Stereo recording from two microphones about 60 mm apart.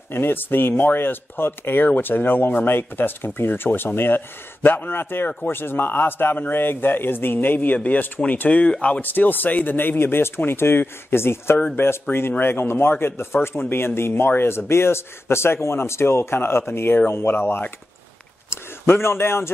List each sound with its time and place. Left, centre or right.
0.1 s speech: left